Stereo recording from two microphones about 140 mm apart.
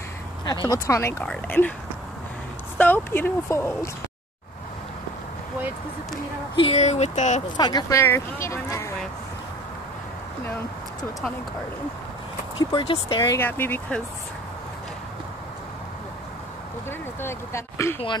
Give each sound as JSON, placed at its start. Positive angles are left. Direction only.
{"t": 0.5, "sound": "speech", "side_deg": 30}
{"t": 1.2, "sound": "speech", "side_deg": 10}
{"t": 2.8, "sound": "speech", "side_deg": 15}
{"t": 6.6, "sound": "speech", "side_deg": 50}
{"t": 7.5, "sound": "speech", "side_deg": 30}
{"t": 8.0, "sound": "speech", "side_deg": 20}
{"t": 12.5, "sound": "speech", "side_deg": 35}
{"t": 13.3, "sound": "speech", "side_deg": 15}
{"t": 17.2, "sound": "speech", "side_deg": 20}